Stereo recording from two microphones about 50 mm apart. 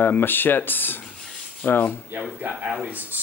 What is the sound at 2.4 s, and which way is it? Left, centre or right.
Speech, right.